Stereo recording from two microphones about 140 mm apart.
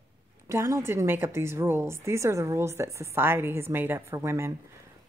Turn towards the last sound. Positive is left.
turn(degrees=-20)  # may be behind; listen again after turning